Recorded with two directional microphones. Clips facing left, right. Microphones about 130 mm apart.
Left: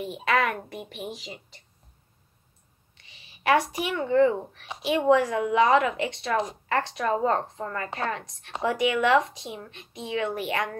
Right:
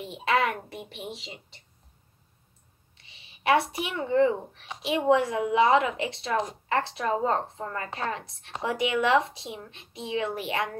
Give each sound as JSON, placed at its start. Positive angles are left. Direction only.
{"t": 0.0, "sound": "a woman's voice", "side_deg": -25}
{"t": 3.0, "sound": "a sound", "side_deg": -30}
{"t": 4.1, "sound": "a woman's voice", "side_deg": -25}
{"t": 7.8, "sound": "speech", "side_deg": 35}
{"t": 8.1, "sound": "a woman's voice", "side_deg": -30}